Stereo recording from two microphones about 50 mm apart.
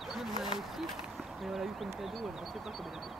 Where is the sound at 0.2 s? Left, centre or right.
Centre.